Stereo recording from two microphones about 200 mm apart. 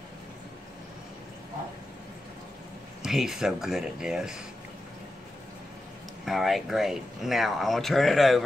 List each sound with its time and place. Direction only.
3.0 s speech: centre (ahead or behind)
6.2 s speech: centre (ahead or behind)